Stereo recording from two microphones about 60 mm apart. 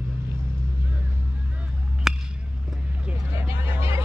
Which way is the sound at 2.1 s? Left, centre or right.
Centre.